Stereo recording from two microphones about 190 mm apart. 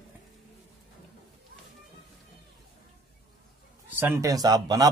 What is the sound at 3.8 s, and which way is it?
Speech, 10° right (ahead or behind).